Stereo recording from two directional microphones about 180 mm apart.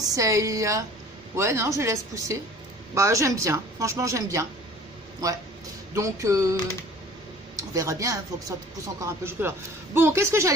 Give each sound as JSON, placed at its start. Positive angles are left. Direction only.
{"t": 0.1, "sound": "speech", "side_deg": -15}
{"t": 5.9, "sound": "speech", "side_deg": -15}
{"t": 7.5, "sound": "speech", "side_deg": -20}